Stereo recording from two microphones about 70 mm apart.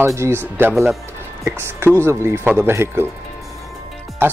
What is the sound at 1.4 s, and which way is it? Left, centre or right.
Speech, right.